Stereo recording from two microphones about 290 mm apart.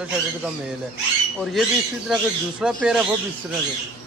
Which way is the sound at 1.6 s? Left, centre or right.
Centre.